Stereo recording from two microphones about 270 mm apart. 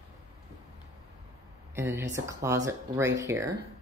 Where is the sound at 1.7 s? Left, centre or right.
Centre.